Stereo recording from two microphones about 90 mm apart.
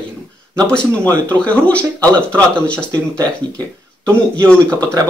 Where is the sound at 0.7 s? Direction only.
15° left (ahead or behind).